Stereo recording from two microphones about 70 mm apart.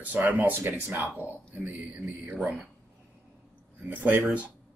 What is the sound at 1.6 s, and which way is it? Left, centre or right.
Speech, right.